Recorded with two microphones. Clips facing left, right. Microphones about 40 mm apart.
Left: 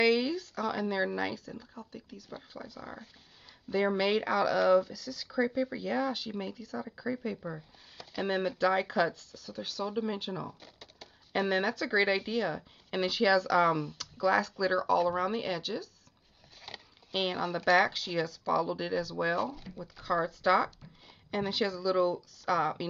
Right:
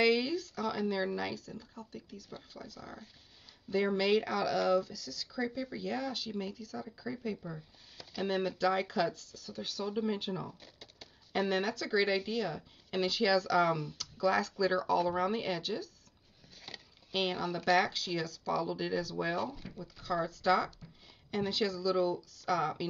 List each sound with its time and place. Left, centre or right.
0.0 s speech: centre
19.8 s speech: centre